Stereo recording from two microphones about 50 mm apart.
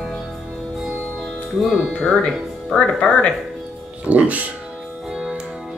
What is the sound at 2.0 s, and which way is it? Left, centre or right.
Speech, centre.